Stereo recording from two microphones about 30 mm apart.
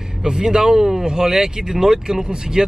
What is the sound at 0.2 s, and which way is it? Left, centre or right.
Speech, right.